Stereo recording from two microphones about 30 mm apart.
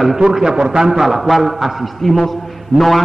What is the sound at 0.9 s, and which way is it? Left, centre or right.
A man's voice, centre.